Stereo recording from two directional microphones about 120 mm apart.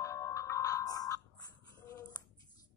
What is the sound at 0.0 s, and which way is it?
Music, 25° left (ahead or behind).